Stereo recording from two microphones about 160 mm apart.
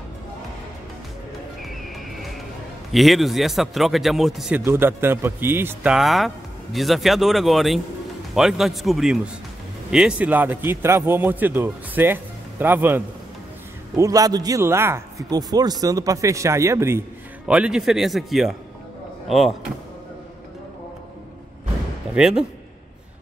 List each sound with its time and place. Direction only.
1.6 s music: centre (ahead or behind)
2.9 s speech: centre (ahead or behind)
4.6 s a man's voice: 15° right (ahead or behind)
5.9 s a man's voice: centre (ahead or behind); by 17.0 s 15° right (ahead or behind)
17.5 s speech: 5° right (ahead or behind)
22.1 s speech: 5° right (ahead or behind)